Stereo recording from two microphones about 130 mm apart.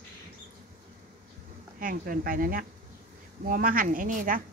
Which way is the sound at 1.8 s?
90° right.